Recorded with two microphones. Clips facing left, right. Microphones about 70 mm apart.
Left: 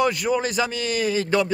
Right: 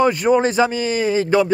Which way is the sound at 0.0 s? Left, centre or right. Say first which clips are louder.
Right 6 dB; right.